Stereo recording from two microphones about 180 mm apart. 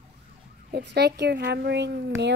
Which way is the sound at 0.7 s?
65° right (ahead or behind).